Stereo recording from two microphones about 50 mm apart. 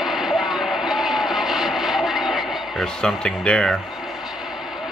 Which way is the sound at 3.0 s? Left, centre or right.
Centre.